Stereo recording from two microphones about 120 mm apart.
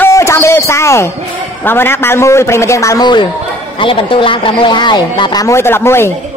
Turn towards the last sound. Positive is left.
turn(degrees=20)  # may be behind; listen again after turning